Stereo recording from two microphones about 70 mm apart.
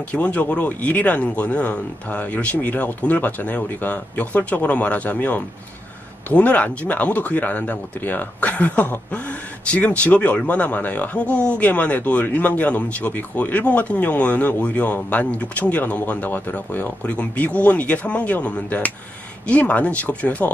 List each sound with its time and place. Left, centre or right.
0.1 s speech: left